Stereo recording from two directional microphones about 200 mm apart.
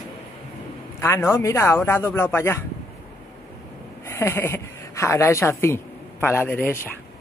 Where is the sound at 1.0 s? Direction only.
15° left (ahead or behind).